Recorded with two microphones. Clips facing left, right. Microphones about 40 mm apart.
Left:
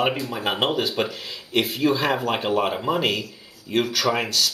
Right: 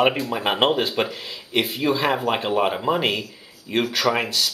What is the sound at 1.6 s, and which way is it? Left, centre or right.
Speech, centre.